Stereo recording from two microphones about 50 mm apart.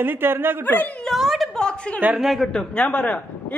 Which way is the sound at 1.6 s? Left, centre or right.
Centre.